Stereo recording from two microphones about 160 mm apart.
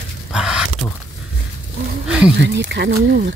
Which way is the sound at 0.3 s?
5° right (ahead or behind).